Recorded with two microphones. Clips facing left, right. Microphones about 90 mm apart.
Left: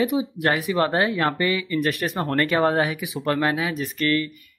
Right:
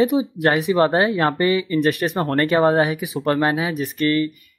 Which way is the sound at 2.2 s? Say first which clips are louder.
Right 2 dB; 35° right (ahead or behind).